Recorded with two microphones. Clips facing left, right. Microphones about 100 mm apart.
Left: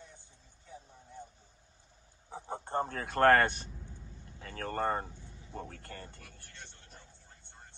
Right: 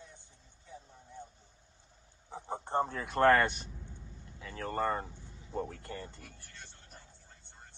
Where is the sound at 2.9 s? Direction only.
55° left (ahead or behind).